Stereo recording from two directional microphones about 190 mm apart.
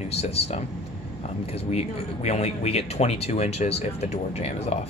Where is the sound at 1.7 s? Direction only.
35° left (ahead or behind).